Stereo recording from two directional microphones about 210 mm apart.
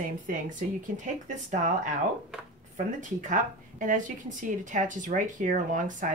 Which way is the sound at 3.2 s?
40° right (ahead or behind).